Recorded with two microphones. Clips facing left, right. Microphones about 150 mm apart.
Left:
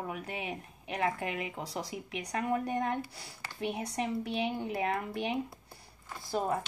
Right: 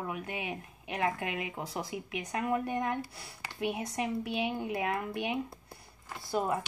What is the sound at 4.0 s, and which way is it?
A woman's voice, 30° left (ahead or behind).